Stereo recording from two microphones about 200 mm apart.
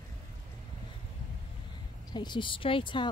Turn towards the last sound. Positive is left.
turn(degrees=25)  # may be behind; listen again after turning